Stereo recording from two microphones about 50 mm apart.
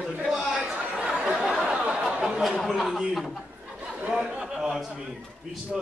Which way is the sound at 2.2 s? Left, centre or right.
Centre.